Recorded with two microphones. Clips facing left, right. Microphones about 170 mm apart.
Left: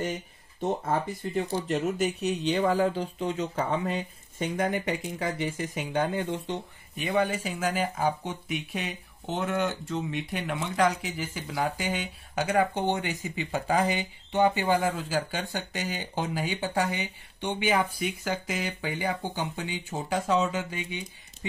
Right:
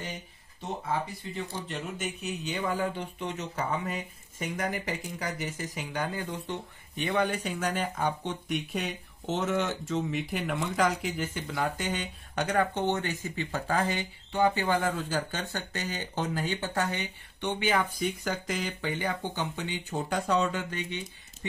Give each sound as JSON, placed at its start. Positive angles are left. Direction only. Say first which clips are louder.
{"t": 0.6, "sound": "speech", "louder": "left 5 dB", "side_deg": 50}
{"t": 7.0, "sound": "speech", "louder": "left 1 dB", "side_deg": 5}